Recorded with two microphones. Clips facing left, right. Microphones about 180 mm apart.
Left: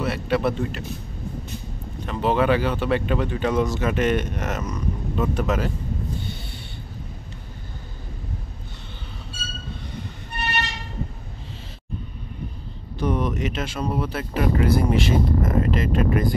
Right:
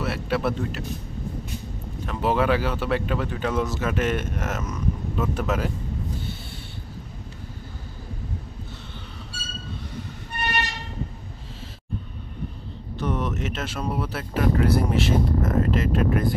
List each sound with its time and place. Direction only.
0.0 s speech: centre (ahead or behind)
2.0 s speech: centre (ahead or behind)
13.0 s speech: centre (ahead or behind)